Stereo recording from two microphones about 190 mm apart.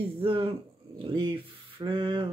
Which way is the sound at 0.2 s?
30° right (ahead or behind).